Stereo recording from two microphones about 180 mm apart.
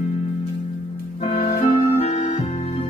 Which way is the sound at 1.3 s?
35° left (ahead or behind).